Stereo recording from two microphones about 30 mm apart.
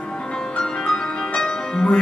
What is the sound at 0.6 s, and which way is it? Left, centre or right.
Music, centre.